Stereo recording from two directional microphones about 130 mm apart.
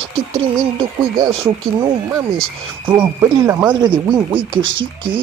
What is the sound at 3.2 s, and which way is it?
Speech, 20° right (ahead or behind).